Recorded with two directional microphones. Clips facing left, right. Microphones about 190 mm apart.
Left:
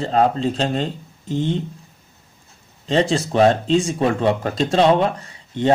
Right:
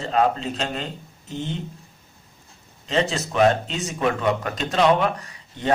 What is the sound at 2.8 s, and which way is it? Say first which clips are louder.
Speech: left 5 dB; 30° left (ahead or behind).